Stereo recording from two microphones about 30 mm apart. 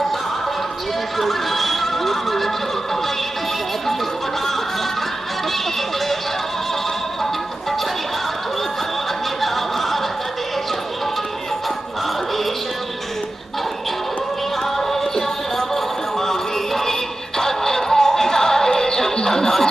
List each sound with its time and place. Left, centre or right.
1.1 s neigh: centre
9.4 s a sound: centre
14.8 s music: centre